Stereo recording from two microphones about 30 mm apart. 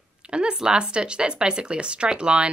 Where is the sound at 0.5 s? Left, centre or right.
Right.